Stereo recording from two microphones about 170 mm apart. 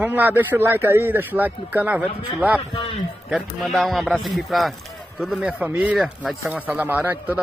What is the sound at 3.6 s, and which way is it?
A man's voice, centre (ahead or behind).